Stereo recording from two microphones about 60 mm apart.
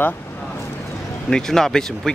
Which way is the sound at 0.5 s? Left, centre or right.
Left.